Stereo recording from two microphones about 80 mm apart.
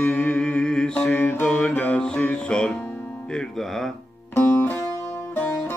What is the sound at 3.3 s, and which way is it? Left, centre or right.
Speech, centre.